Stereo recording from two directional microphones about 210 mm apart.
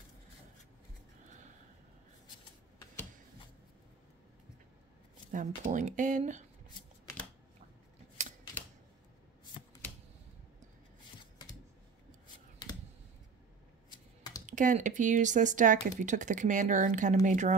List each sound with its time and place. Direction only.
5.3 s speech: 35° right (ahead or behind)
14.4 s speech: 35° right (ahead or behind)